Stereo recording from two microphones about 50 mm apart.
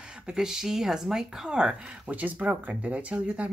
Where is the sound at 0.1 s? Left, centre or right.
Centre.